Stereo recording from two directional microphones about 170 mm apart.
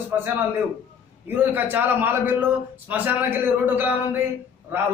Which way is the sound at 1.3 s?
10° right (ahead or behind).